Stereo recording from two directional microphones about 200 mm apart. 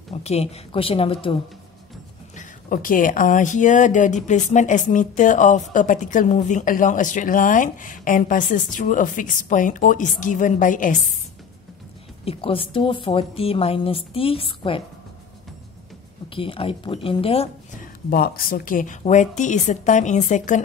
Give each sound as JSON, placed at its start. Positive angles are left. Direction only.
{"t": 0.2, "sound": "speech", "side_deg": 30}
{"t": 2.3, "sound": "speech", "side_deg": 45}
{"t": 12.3, "sound": "speech", "side_deg": 30}
{"t": 16.3, "sound": "speech", "side_deg": 25}
{"t": 18.1, "sound": "speech", "side_deg": 50}